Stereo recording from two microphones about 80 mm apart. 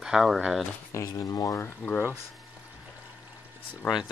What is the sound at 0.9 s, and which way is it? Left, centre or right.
Speech, left.